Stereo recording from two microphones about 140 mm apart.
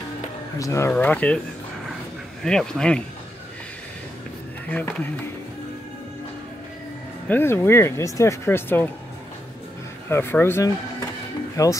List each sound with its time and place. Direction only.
0.6 s speech: 20° left (ahead or behind)
0.9 s speech: 10° left (ahead or behind)
2.4 s speech: 5° left (ahead or behind)
4.6 s speech: 10° left (ahead or behind)
7.2 s speech: 15° left (ahead or behind)
10.0 s speech: 15° left (ahead or behind)